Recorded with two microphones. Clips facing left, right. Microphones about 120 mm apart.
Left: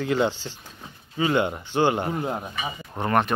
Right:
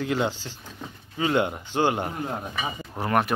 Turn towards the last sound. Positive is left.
turn(degrees=-5)  # may be behind; listen again after turning